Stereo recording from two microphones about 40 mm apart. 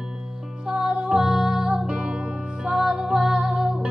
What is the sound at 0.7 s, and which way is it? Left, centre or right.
Music, centre.